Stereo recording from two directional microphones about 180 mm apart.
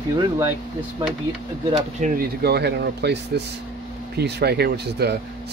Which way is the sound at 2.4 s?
65° right (ahead or behind).